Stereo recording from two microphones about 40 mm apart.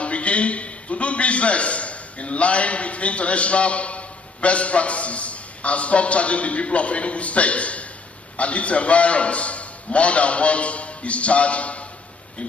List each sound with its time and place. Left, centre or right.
0.0 s a man's voice: left